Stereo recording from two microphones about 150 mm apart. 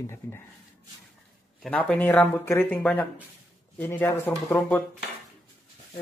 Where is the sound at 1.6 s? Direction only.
5° left (ahead or behind).